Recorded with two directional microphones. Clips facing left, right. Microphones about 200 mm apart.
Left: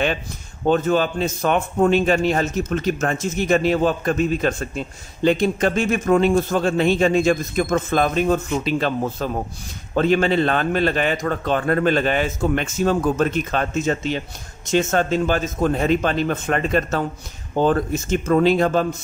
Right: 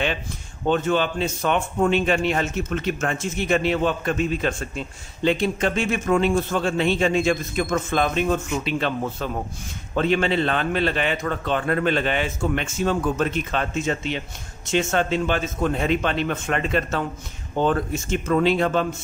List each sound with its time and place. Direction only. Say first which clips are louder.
0.7 s a man's voice: left 3 dB; 40° left (ahead or behind)